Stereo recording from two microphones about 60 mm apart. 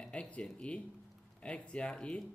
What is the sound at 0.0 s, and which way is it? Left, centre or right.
Speech, centre.